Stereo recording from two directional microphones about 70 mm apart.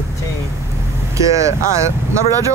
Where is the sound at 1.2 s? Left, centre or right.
Right.